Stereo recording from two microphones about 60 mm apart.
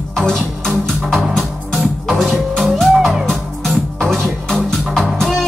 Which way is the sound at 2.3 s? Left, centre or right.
Centre.